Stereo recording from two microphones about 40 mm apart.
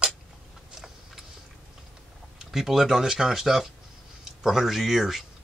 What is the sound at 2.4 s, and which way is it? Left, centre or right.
Speech, centre.